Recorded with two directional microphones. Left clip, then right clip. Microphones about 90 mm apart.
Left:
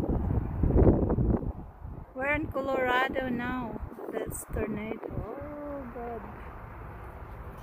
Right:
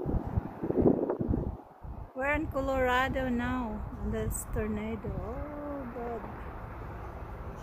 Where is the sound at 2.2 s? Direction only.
90° left.